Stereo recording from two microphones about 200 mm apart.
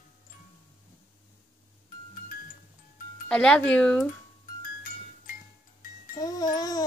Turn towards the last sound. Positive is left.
turn(degrees=20)  # may be behind; listen again after turning